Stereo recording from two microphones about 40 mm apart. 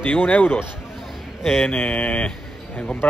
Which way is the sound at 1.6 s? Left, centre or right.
Left.